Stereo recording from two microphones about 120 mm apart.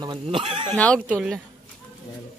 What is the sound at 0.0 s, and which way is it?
Speech, 45° right (ahead or behind).